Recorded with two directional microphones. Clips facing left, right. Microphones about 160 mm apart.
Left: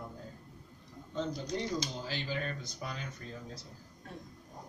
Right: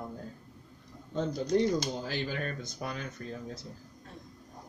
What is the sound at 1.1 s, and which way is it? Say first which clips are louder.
Speech: right 7 dB; 50° right (ahead or behind).